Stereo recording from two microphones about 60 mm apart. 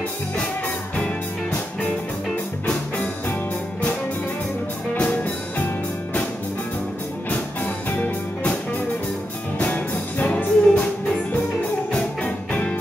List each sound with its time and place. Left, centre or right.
4.9 s music: left
7.2 s music: left
9.6 s music: left
11.9 s music: centre